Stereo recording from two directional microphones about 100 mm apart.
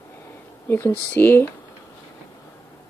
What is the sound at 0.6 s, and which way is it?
Speech, 25° left (ahead or behind).